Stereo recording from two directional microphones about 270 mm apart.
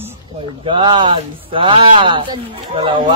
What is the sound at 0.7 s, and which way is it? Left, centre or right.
Speech, centre.